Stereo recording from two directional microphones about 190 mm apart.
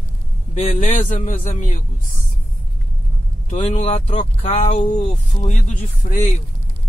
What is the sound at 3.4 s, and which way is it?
Speech, 40° left (ahead or behind).